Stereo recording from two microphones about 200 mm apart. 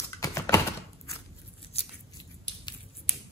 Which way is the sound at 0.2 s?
15° left (ahead or behind).